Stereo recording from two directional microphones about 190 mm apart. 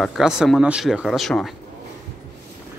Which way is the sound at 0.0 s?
5° right (ahead or behind).